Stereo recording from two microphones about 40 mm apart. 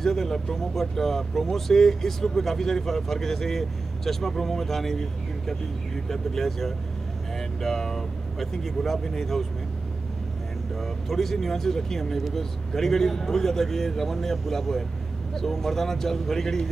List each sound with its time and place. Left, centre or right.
0.0 s speech: centre
10.8 s speech: centre